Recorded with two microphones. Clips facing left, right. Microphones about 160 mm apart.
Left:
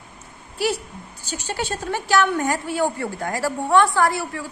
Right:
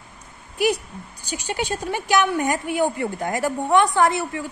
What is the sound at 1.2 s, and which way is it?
A woman's voice, 15° right (ahead or behind).